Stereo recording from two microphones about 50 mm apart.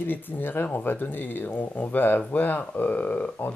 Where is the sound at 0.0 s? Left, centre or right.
Left.